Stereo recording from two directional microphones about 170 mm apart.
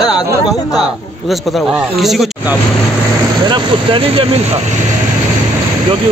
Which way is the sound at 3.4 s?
30° right (ahead or behind).